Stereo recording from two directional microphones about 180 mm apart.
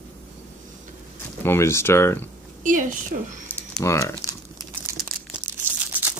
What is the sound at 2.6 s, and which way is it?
Speech, 45° right (ahead or behind).